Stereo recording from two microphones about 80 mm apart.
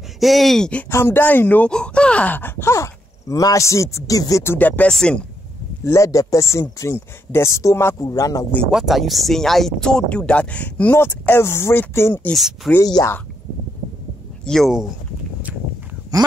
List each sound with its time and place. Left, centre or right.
0.2 s speech: centre
0.8 s speech: left
1.7 s speech: centre; by 4.6 s left
4.6 s speech: left
5.9 s speech: left
8.1 s speech: left
8.6 s speech: centre
11.0 s speech: left
12.4 s speech: centre
12.8 s speech: left
14.4 s speech: centre
16.1 s a sound: right